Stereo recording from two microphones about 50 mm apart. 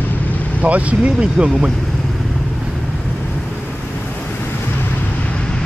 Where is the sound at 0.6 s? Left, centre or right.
Right.